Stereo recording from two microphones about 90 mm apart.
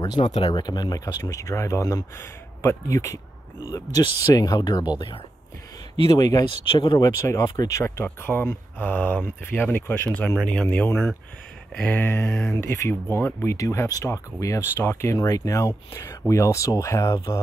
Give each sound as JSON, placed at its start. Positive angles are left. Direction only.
{"t": 0.2, "sound": "speech", "side_deg": 90}
{"t": 0.5, "sound": "speech", "side_deg": 50}
{"t": 2.1, "sound": "speech", "side_deg": 25}
{"t": 6.1, "sound": "speech", "side_deg": 40}
{"t": 6.6, "sound": "speech", "side_deg": 65}
{"t": 7.0, "sound": "speech", "side_deg": 30}
{"t": 7.4, "sound": "speech", "side_deg": 45}
{"t": 8.0, "sound": "speech", "side_deg": 25}
{"t": 13.6, "sound": "speech", "side_deg": 40}